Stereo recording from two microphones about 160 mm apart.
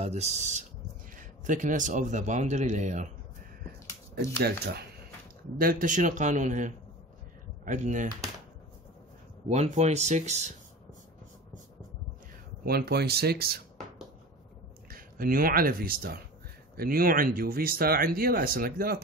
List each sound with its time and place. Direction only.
0.0 s speech: 45° right (ahead or behind)
4.1 s speech: 90° right
5.6 s speech: 60° right (ahead or behind)
9.5 s speech: 45° right (ahead or behind)
12.6 s speech: 75° right (ahead or behind)
14.9 s speech: 65° right (ahead or behind)